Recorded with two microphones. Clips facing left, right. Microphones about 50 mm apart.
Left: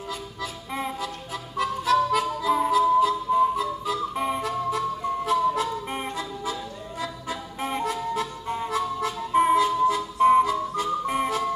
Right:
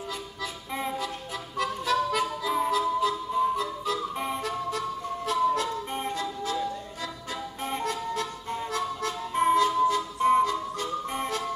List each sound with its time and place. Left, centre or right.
0.4 s music: centre